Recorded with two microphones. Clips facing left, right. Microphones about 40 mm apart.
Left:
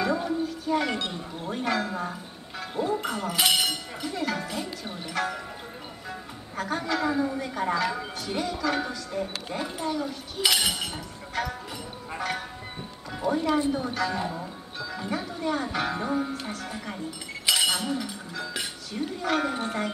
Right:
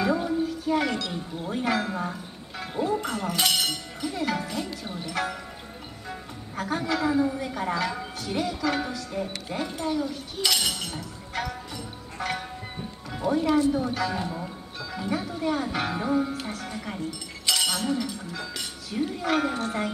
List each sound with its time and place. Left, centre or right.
0.0 s a sound: centre
1.1 s a man's voice: centre
4.6 s a man's voice: centre
10.4 s chink: centre
11.3 s a man's voice: centre
12.2 s music: centre
13.6 s speech: left
13.8 s a man's voice: centre
17.5 s chink: centre
18.9 s a man's voice: centre